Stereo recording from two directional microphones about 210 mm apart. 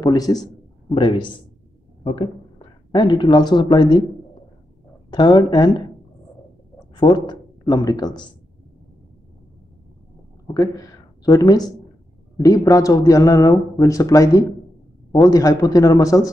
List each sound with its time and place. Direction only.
0.0 s a man's voice: 15° left (ahead or behind)
2.9 s speech: 20° left (ahead or behind)
5.1 s speech: 20° left (ahead or behind)
7.0 s speech: 20° left (ahead or behind)
10.5 s a man's voice: 15° left (ahead or behind)